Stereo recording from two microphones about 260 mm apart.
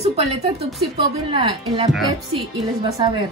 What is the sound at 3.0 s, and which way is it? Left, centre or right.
Speech, centre.